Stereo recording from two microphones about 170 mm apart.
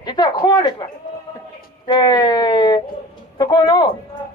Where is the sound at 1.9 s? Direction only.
25° left (ahead or behind).